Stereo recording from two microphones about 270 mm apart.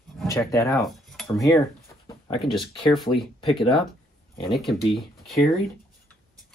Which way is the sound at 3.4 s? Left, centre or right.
Centre.